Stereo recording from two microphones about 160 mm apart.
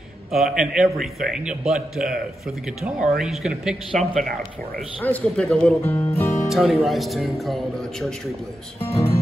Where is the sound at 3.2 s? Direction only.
5° right (ahead or behind); by 6.5 s 15° left (ahead or behind).